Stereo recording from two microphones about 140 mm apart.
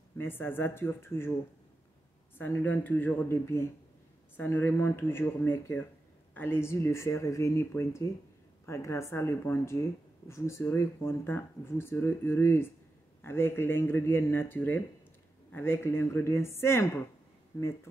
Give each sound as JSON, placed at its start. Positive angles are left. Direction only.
{"t": 0.2, "sound": "speech", "side_deg": 15}
{"t": 2.3, "sound": "speech", "side_deg": 15}